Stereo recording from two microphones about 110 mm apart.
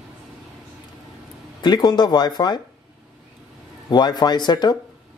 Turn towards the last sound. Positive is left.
turn(degrees=40)  # may be behind; listen again after turning